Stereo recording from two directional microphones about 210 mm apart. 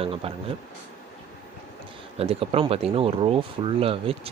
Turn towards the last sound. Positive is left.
turn(degrees=-25)  # may be behind; listen again after turning